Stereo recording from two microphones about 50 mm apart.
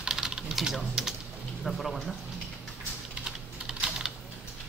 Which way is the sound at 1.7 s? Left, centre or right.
Centre.